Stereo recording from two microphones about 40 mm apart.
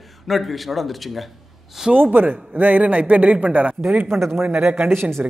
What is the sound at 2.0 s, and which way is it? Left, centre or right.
A man's voice, right.